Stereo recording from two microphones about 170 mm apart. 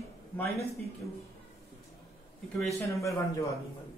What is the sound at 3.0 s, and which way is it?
Speech, 20° left (ahead or behind).